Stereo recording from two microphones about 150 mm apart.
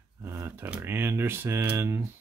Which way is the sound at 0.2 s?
15° right (ahead or behind).